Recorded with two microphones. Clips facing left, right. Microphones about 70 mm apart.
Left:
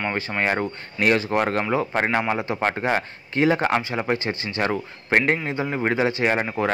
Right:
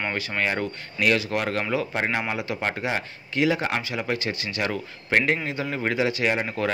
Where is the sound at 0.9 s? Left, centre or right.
Left.